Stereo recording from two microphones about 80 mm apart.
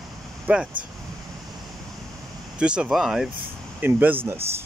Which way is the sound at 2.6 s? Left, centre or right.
Centre.